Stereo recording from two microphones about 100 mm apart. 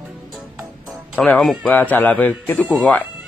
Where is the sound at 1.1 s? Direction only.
15° left (ahead or behind).